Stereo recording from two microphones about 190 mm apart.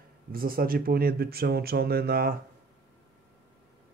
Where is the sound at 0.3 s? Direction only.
50° right (ahead or behind).